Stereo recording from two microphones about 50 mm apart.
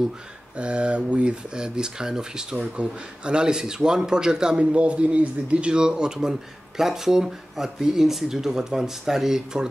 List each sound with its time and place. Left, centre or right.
0.6 s speech: right
2.5 s speech: right